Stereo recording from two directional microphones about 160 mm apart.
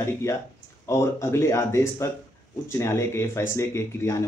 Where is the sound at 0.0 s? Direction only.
15° left (ahead or behind).